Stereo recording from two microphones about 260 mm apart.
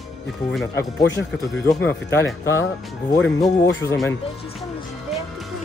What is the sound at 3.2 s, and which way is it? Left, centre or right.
Speech, centre.